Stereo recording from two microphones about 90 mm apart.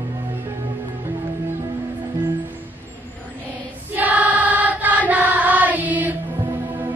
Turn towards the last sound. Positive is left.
turn(degrees=-20)  # may be behind; listen again after turning